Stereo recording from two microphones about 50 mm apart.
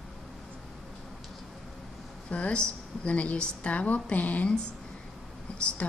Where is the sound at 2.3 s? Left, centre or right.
Left.